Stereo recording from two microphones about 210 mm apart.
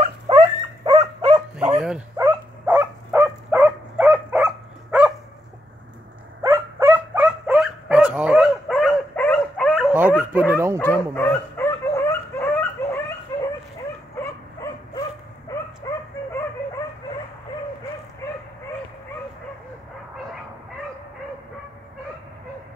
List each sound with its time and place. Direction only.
0.0 s dog: 20° right (ahead or behind)
1.6 s dog: 5° right (ahead or behind)
6.4 s dog: 10° right (ahead or behind)
9.9 s dog: 10° right (ahead or behind)
10.8 s dog: 10° left (ahead or behind)